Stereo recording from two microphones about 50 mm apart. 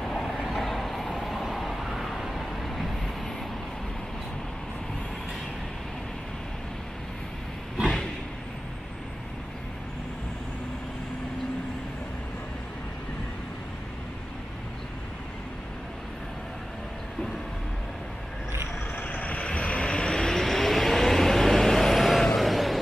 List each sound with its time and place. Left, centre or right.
0.0 s vehicle: centre
18.9 s vehicle: left
20.1 s vehicle: centre